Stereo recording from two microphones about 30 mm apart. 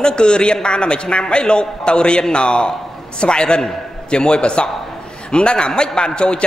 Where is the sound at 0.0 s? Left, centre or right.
Left.